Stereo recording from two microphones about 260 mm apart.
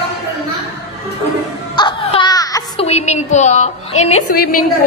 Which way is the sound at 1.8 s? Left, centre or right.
Centre.